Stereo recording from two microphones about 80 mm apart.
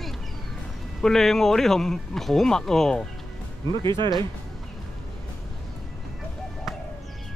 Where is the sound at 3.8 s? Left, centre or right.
Right.